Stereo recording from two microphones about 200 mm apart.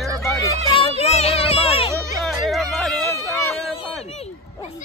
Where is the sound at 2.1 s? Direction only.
Centre (ahead or behind).